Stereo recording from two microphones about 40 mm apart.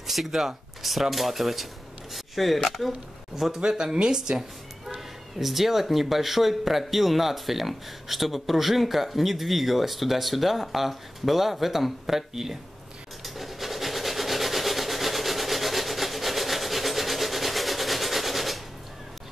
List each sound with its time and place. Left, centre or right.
0.0 s speech: centre
3.6 s speech: centre
4.8 s speech: centre
13.2 s rub: centre